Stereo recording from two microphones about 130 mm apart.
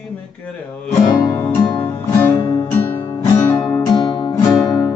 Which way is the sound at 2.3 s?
40° left (ahead or behind).